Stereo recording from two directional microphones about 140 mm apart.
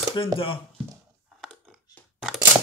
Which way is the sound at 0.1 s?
40° left (ahead or behind).